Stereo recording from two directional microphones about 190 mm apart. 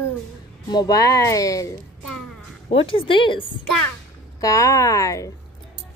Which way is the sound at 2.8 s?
25° left (ahead or behind).